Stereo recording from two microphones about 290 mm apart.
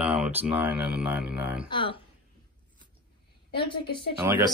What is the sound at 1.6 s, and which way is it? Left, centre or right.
Speech, centre.